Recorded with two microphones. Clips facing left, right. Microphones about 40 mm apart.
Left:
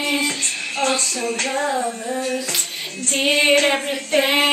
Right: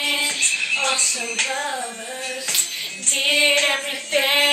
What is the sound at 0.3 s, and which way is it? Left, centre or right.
Female singing, centre.